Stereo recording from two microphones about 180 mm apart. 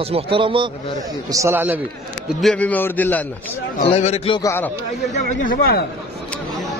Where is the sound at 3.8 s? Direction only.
35° left (ahead or behind).